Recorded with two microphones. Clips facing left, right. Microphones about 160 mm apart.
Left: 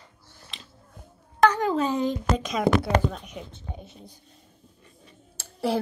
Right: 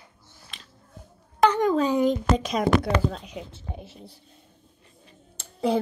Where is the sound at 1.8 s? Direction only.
15° right (ahead or behind).